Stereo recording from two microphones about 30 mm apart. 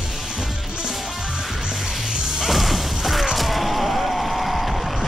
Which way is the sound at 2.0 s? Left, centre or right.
Centre.